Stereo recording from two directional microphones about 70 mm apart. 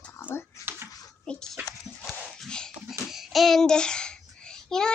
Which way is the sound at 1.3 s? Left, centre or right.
Centre.